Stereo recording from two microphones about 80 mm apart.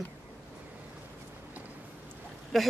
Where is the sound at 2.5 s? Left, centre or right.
Centre.